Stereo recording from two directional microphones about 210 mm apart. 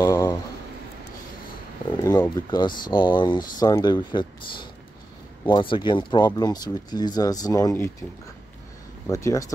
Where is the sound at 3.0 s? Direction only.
20° left (ahead or behind).